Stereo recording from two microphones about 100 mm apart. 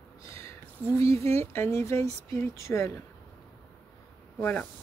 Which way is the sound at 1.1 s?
85° right.